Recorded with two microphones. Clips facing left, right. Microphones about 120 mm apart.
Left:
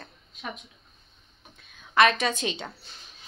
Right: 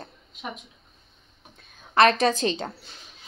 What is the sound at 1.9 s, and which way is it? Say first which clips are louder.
Speech: right 3 dB; 35° right (ahead or behind).